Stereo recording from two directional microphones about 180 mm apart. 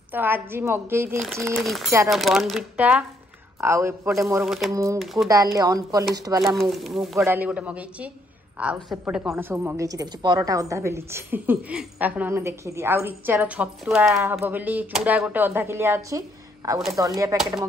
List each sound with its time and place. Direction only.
0.1 s a woman's voice: 10° right (ahead or behind)
1.2 s a woman's voice: centre (ahead or behind); by 4.5 s 15° right (ahead or behind)
4.5 s speech: centre (ahead or behind)
5.3 s speech: 20° right (ahead or behind)
6.4 s a woman's voice: centre (ahead or behind)
14.0 s a woman's voice: 15° right (ahead or behind)